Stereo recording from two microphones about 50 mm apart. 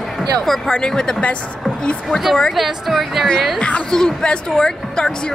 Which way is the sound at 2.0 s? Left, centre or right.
Centre.